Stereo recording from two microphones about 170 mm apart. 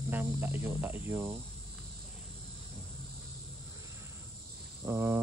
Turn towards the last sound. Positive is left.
turn(degrees=-15)  # may be behind; listen again after turning